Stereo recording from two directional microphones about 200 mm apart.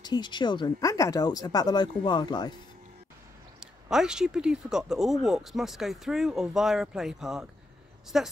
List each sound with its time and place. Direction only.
0.0 s speech: 20° left (ahead or behind)
3.5 s speech: 5° right (ahead or behind)